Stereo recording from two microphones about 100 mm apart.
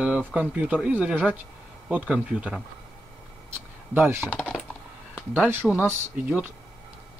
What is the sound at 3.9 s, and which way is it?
Speech, 20° right (ahead or behind).